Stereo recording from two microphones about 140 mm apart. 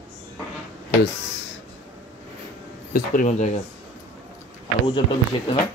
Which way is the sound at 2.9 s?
65° left (ahead or behind).